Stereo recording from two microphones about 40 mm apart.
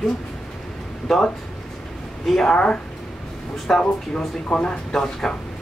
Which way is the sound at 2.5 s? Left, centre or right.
Left.